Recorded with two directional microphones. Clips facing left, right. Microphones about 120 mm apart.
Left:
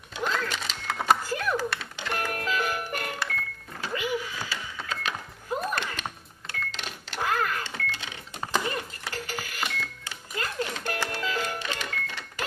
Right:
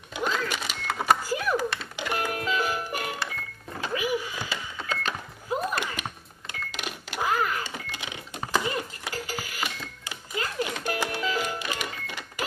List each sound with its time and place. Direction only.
0.1 s a sound: 10° right (ahead or behind)
2.0 s music: 10° right (ahead or behind)
3.8 s power windows: 15° right (ahead or behind)
5.6 s cash register: 10° right (ahead or behind)